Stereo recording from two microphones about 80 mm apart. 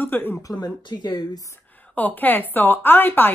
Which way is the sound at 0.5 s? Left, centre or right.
Left.